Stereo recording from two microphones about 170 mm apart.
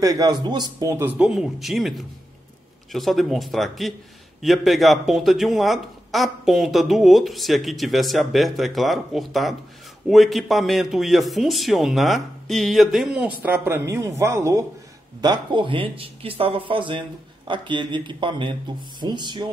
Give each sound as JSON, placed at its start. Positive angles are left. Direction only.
{"t": 0.0, "sound": "speech", "side_deg": -20}